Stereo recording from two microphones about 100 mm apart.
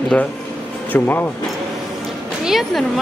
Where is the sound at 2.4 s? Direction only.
Centre (ahead or behind).